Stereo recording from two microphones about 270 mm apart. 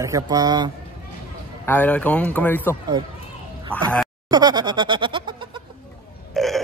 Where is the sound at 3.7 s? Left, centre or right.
Centre.